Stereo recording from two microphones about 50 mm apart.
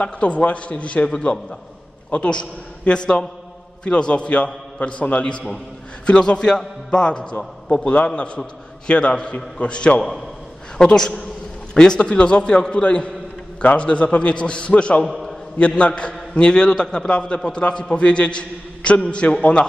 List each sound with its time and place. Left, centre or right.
0.0 s a man's voice: left
15.0 s a man's voice: centre
15.5 s a man's voice: left